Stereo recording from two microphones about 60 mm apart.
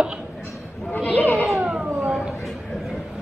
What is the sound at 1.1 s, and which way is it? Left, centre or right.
Children playing, left.